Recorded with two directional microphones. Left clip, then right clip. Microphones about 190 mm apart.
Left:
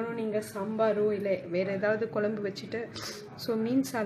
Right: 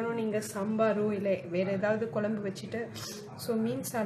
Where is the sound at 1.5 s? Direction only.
25° left (ahead or behind).